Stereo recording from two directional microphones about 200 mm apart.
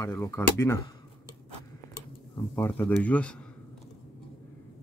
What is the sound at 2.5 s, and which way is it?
Speech, 10° left (ahead or behind).